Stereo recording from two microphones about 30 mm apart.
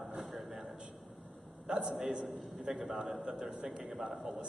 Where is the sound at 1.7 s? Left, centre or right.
Right.